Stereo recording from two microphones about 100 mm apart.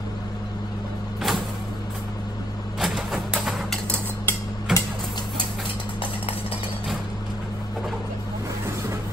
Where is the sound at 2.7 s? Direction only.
5° right (ahead or behind).